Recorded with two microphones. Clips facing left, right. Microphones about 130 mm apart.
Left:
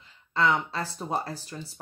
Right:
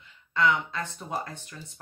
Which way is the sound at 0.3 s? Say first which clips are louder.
Even; 35° left (ahead or behind).